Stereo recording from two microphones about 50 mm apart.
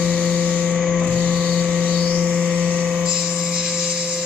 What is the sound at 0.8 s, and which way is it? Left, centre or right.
Vehicle, centre.